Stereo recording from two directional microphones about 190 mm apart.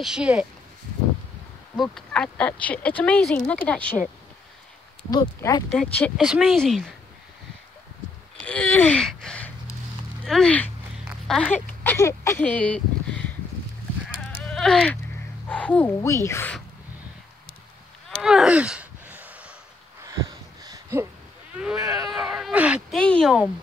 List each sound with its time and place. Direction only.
0.0 s speech: 5° right (ahead or behind)
1.8 s speech: 5° left (ahead or behind)
5.1 s speech: 20° left (ahead or behind)
5.8 s speech: 5° left (ahead or behind)
8.4 s speech: 5° left (ahead or behind)
14.3 s honk: centre (ahead or behind)
15.4 s speech: 5° left (ahead or behind)
18.2 s a sound: centre (ahead or behind)
20.6 s a sound: 15° right (ahead or behind)
21.7 s speech: 20° right (ahead or behind)
22.1 s speech: 5° right (ahead or behind)
22.9 s speech: 5° left (ahead or behind)